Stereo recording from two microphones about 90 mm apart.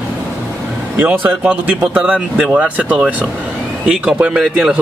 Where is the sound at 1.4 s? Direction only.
15° right (ahead or behind).